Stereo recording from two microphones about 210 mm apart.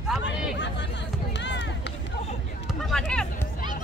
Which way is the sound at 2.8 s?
Centre (ahead or behind).